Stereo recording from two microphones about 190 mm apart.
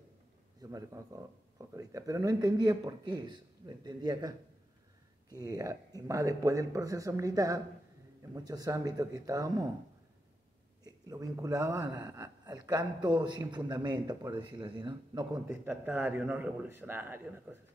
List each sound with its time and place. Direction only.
0.6 s speech: 20° right (ahead or behind)
10.8 s speech: 20° right (ahead or behind)
15.4 s speech: 10° right (ahead or behind)